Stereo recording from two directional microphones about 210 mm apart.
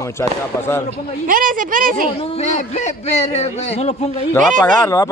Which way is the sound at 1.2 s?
40° right (ahead or behind).